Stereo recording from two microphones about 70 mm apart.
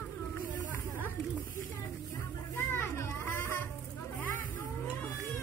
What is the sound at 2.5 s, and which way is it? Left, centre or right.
Children playing, left.